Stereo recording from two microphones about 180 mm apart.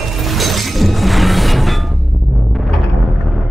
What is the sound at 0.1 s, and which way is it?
Music, centre (ahead or behind).